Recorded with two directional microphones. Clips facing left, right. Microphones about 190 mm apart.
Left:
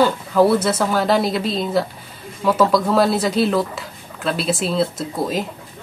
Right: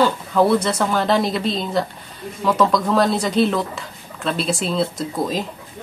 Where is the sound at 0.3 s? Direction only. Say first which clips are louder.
Left 2 dB; 5° left (ahead or behind).